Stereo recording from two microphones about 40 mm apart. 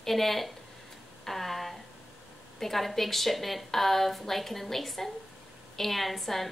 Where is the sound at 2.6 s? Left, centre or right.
Centre.